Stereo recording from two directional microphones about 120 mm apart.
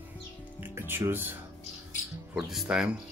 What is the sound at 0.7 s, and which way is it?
Speech, 20° right (ahead or behind).